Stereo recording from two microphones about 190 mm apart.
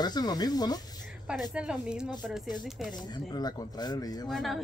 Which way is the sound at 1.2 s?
Centre (ahead or behind).